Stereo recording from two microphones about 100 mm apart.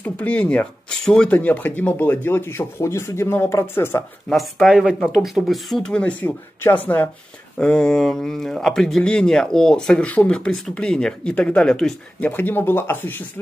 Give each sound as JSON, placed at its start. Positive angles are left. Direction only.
{"t": 0.0, "sound": "speech", "side_deg": 15}
{"t": 4.3, "sound": "speech", "side_deg": 0}
{"t": 7.5, "sound": "speech", "side_deg": 10}